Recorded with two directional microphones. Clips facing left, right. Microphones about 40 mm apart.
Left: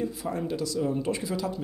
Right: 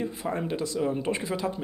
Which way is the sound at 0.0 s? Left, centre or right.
Right.